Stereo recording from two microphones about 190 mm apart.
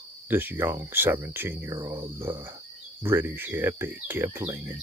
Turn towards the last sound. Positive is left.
turn(degrees=-15)  # may be behind; listen again after turning